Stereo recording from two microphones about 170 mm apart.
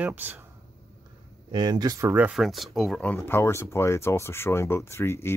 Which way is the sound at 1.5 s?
25° right (ahead or behind).